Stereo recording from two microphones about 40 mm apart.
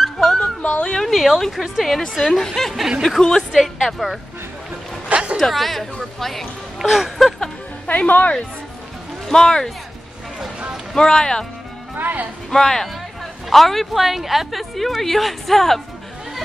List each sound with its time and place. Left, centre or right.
0.0 s music: centre
0.4 s music: left
0.9 s a woman's voice: centre
3.5 s a woman's voice: centre
5.0 s music: right
5.4 s a woman's voice: centre
7.8 s music: left
8.1 s speech: left
9.3 s speech: centre
11.0 s speech: centre
12.0 s speech: right
12.4 s a woman's voice: centre